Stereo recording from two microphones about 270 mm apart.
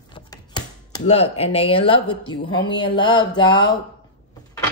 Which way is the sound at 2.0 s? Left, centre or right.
Left.